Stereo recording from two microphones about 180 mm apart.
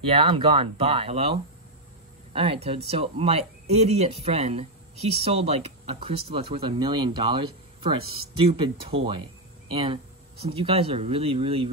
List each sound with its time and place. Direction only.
0.0 s speech: 30° right (ahead or behind)